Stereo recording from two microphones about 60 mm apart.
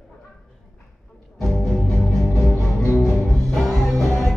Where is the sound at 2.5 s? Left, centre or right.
Left.